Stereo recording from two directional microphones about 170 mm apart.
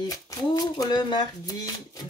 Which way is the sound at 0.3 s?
20° left (ahead or behind).